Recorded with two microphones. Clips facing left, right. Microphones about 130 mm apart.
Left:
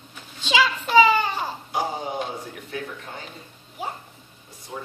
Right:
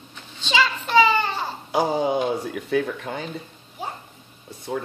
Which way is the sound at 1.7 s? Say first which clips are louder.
Right 9 dB; 90° right.